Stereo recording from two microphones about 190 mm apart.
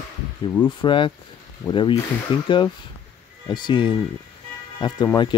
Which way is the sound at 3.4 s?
25° left (ahead or behind).